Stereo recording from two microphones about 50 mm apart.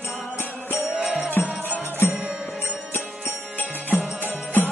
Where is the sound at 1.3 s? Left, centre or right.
Left.